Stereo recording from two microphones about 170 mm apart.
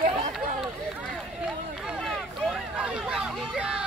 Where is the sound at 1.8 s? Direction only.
Centre (ahead or behind).